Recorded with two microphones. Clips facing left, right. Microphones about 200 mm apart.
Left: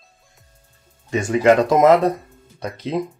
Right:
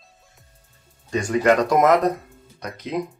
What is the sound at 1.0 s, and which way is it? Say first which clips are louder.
Speech: left 3 dB; 25° left (ahead or behind).